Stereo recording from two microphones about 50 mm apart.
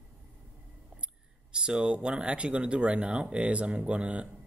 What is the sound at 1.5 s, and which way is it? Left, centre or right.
Speech, centre.